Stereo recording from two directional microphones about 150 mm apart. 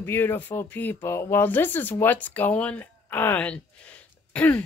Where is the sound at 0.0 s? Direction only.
15° left (ahead or behind).